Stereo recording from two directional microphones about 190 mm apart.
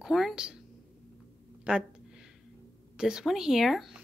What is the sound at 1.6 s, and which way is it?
Speech, 5° right (ahead or behind).